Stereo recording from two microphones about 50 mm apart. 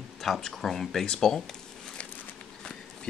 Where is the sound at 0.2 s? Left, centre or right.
Centre.